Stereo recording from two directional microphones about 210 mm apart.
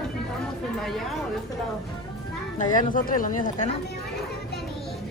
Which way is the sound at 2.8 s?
40° left (ahead or behind).